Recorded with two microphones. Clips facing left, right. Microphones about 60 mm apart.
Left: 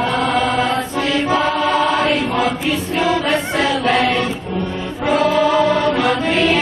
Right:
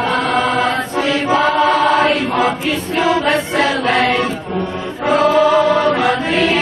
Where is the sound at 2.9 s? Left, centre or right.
Centre.